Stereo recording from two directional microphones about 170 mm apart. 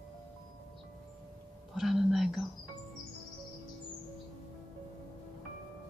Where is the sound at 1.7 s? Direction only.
Centre (ahead or behind).